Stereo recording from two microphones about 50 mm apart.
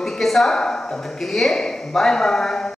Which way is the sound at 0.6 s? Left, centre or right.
Centre.